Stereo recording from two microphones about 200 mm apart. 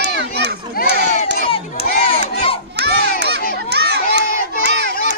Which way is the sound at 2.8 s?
55° right (ahead or behind).